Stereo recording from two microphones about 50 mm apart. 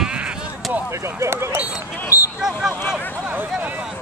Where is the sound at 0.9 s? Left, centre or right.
Right.